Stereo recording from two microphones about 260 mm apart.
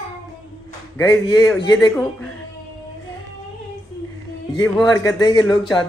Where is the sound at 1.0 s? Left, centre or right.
Centre.